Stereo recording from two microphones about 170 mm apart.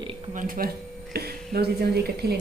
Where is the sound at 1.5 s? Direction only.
65° right (ahead or behind).